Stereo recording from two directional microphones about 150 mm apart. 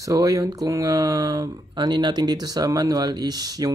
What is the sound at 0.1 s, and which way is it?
Speech, 20° right (ahead or behind).